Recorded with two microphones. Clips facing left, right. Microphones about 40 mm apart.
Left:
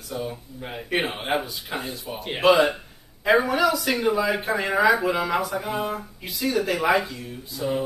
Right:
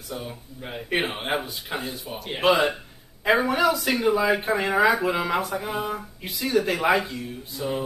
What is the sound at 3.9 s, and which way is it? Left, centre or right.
Speech, centre.